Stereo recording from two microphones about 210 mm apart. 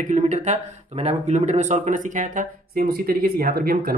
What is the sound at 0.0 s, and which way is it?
Speech, 35° right (ahead or behind).